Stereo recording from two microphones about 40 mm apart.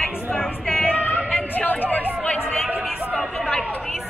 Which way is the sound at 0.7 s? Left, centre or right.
Left.